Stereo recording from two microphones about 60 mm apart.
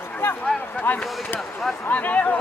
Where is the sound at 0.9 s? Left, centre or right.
Left.